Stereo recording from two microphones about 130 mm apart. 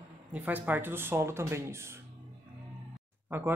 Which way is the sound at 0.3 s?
15° right (ahead or behind).